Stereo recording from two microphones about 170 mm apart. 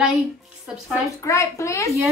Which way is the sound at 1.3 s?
15° left (ahead or behind).